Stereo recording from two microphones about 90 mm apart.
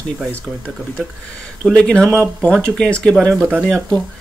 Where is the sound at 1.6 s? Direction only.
10° left (ahead or behind).